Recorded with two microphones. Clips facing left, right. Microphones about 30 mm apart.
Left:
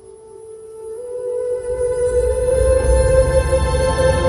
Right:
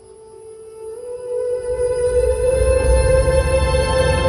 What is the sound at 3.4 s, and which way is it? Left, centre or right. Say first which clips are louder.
Music: even; right.